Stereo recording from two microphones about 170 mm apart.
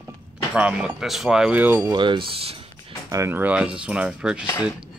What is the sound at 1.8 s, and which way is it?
Speech, 25° right (ahead or behind).